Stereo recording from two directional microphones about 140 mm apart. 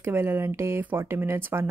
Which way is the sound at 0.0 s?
15° right (ahead or behind).